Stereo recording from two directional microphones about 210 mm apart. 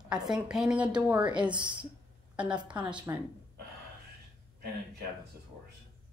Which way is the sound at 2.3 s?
5° right (ahead or behind).